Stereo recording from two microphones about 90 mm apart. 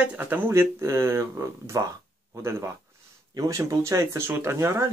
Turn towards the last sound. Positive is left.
turn(degrees=-30)  # may be behind; listen again after turning